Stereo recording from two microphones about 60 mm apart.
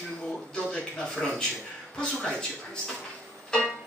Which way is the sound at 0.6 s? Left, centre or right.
Centre.